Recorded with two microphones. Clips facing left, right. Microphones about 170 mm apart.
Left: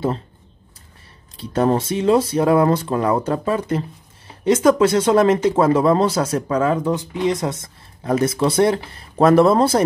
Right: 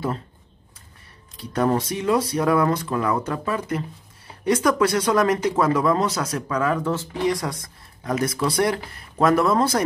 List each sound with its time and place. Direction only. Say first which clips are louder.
1.3 s speech: left 3 dB; 25° left (ahead or behind)